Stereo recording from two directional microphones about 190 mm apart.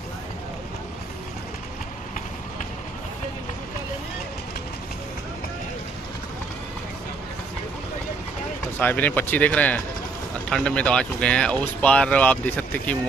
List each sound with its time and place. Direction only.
8.7 s speech: 10° left (ahead or behind)